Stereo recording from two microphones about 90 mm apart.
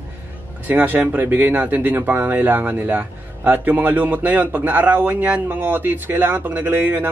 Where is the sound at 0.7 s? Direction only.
20° right (ahead or behind).